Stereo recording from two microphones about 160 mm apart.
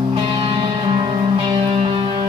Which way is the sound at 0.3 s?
30° right (ahead or behind).